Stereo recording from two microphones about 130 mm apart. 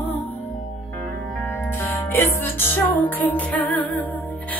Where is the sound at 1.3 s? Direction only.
15° left (ahead or behind).